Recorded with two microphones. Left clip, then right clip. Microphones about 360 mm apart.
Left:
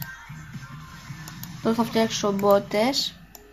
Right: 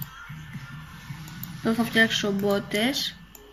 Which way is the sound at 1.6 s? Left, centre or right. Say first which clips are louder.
Right 1 dB; centre.